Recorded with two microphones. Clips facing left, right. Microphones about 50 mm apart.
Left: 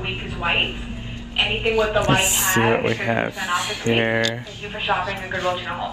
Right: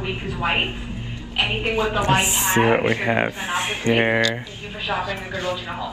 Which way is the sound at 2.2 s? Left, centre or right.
Right.